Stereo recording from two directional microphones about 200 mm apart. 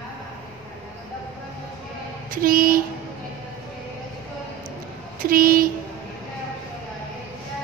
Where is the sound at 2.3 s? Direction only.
45° right (ahead or behind).